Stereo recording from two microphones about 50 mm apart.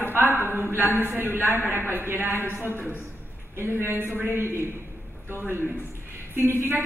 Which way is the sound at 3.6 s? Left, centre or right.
Right.